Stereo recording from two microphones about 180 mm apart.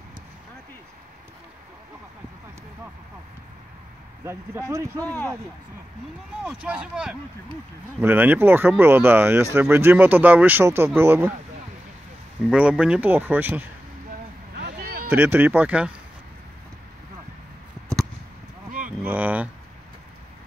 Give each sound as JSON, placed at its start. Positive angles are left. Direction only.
{"t": 4.2, "sound": "speech", "side_deg": -15}
{"t": 5.0, "sound": "speech", "side_deg": 10}
{"t": 6.4, "sound": "speech", "side_deg": -5}
{"t": 12.4, "sound": "speech", "side_deg": -5}
{"t": 14.6, "sound": "a sound", "side_deg": -60}
{"t": 15.0, "sound": "speech", "side_deg": -10}
{"t": 18.9, "sound": "a sound", "side_deg": -10}